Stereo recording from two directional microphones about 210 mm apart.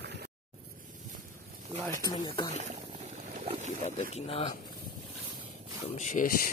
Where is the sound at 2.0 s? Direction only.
20° left (ahead or behind).